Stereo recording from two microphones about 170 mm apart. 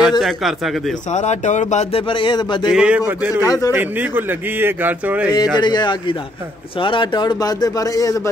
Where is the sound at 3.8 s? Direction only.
10° right (ahead or behind).